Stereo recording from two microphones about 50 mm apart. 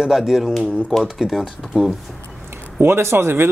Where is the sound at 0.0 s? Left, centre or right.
Centre.